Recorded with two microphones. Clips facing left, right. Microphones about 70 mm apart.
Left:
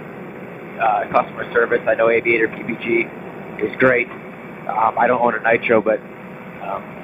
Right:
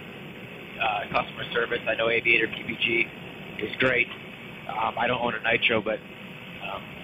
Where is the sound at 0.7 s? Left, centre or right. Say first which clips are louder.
Left 10 dB; left.